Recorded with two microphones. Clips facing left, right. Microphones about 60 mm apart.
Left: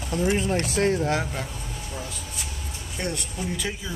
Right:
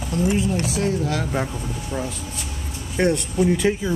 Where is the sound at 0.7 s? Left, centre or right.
Left.